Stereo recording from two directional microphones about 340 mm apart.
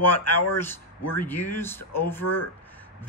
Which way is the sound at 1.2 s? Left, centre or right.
Centre.